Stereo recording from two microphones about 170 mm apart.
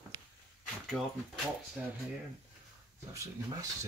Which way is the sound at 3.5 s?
20° right (ahead or behind).